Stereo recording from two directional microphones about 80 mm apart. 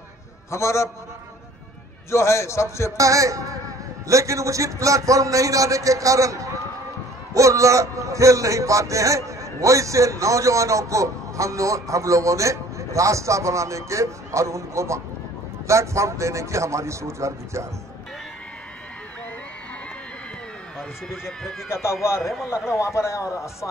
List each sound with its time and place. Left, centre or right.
0.5 s a man's voice: left
2.0 s a man's voice: left
3.0 s a man's voice: right
21.1 s speech: centre
21.6 s a man's voice: left
22.2 s speech: centre
22.7 s a man's voice: left